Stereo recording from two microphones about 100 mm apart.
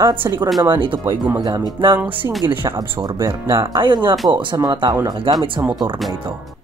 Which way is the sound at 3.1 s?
30° right (ahead or behind).